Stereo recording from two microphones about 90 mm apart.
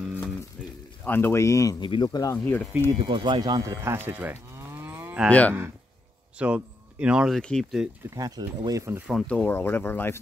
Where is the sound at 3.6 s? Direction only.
30° right (ahead or behind).